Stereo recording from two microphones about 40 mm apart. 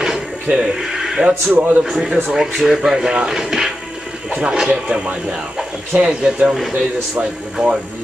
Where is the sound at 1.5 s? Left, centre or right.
Right.